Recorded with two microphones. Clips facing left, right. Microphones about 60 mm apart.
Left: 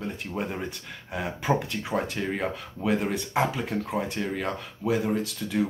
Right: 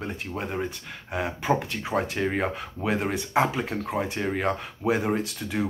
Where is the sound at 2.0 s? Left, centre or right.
Right.